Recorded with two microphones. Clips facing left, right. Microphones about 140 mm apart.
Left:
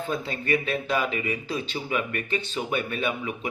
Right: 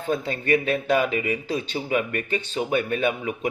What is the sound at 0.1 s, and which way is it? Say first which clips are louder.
Speech: right 5 dB; 40° right (ahead or behind).